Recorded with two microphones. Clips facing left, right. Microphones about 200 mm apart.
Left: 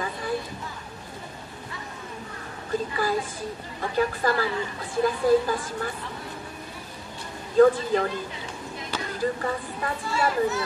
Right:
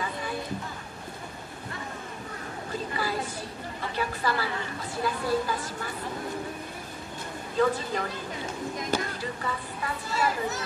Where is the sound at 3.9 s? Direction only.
45° left (ahead or behind).